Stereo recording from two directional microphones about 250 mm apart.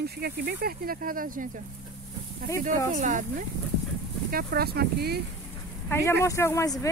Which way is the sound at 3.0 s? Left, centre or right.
Right.